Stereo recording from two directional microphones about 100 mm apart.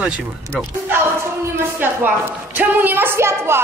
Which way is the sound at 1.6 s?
20° right (ahead or behind).